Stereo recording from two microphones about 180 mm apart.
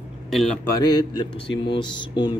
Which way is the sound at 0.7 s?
20° left (ahead or behind).